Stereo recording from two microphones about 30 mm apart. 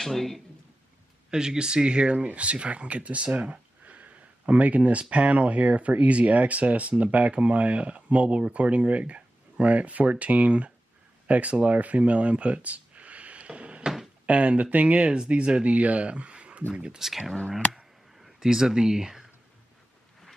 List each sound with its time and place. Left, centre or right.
0.0 s speech: centre
1.3 s speech: right
2.1 s speech: right
3.3 s a sound: right
5.1 s speech: right
11.6 s a sound: right
14.2 s speech: right
15.7 s speech: right
17.0 s speech: centre
18.4 s speech: centre